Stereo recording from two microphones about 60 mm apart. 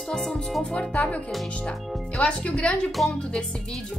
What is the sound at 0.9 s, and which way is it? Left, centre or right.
Speech, left.